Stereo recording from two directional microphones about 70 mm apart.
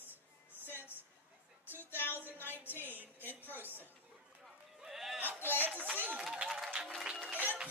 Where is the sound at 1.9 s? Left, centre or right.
Left.